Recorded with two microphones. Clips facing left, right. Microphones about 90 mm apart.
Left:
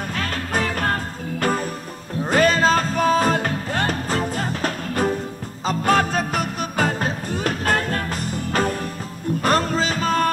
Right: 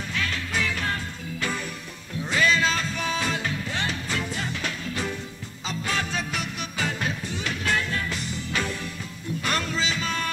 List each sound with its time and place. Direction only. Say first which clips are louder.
0.1 s music: left 3 dB; 45° left (ahead or behind)
2.1 s music: left 6 dB; 45° left (ahead or behind)